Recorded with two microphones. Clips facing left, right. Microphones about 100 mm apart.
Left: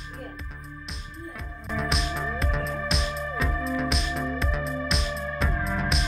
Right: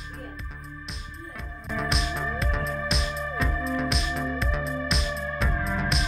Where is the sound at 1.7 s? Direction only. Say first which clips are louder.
Even; centre (ahead or behind).